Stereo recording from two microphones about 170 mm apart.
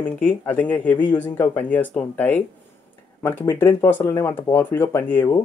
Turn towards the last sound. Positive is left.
turn(degrees=10)  # may be behind; listen again after turning